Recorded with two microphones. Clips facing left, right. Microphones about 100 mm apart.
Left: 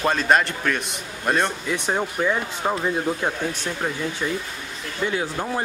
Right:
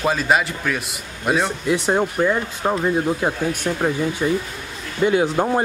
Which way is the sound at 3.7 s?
20° right (ahead or behind).